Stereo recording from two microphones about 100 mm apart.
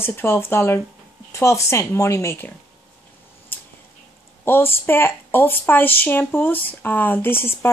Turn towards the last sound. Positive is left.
turn(degrees=25)  # may be behind; listen again after turning